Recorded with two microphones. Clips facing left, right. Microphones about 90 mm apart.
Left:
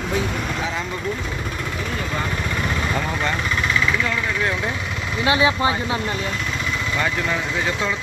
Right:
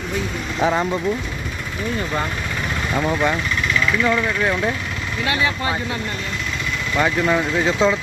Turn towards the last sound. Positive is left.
turn(degrees=-15)  # may be behind; listen again after turning